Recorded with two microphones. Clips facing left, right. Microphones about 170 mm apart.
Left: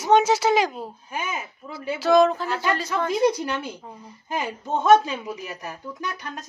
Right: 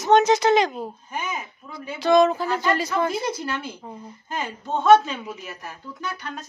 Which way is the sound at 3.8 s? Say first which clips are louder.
Right 3 dB; 5° right (ahead or behind).